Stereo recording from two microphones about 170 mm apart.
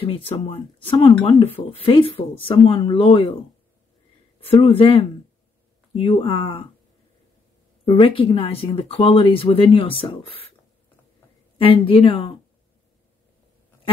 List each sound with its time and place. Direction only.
0.0 s speech: 30° left (ahead or behind)
4.5 s speech: 35° left (ahead or behind)
7.8 s speech: 30° left (ahead or behind)
11.5 s speech: 30° left (ahead or behind)